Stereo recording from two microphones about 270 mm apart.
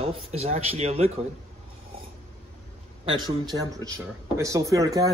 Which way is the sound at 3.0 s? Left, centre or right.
Centre.